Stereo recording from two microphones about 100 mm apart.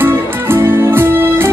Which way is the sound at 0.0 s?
25° right (ahead or behind).